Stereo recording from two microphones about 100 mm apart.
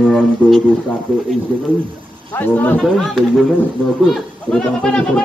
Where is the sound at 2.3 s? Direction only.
20° left (ahead or behind).